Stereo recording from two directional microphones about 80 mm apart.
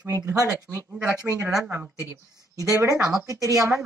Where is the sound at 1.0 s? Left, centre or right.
Right.